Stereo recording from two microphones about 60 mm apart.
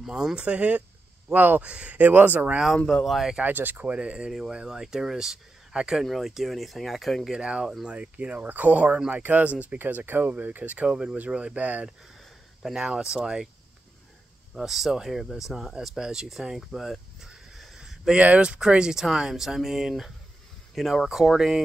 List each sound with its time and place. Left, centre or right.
0.0 s speech: centre
1.3 s speech: right
1.6 s speech: right
3.1 s speech: centre
3.4 s speech: right
3.8 s speech: centre
7.3 s speech: centre
10.9 s speech: centre
12.8 s speech: centre
14.5 s speech: centre
17.7 s a sound: centre
18.2 s speech: right